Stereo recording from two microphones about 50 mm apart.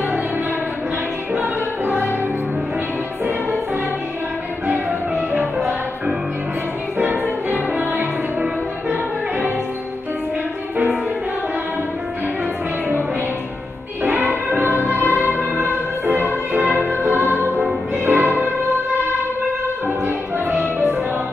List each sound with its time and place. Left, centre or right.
1.3 s music: right
7.0 s music: right
14.8 s music: right
20.1 s music: right